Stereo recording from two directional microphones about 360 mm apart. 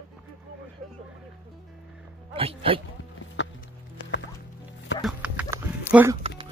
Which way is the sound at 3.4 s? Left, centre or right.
Left.